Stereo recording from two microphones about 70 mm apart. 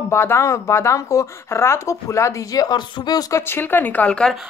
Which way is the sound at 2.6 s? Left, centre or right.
Left.